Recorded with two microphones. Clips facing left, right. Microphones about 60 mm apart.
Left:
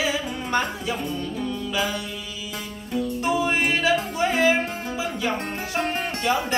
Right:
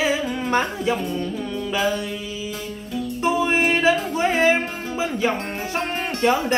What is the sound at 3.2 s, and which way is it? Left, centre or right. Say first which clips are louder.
Music: right 4 dB; right.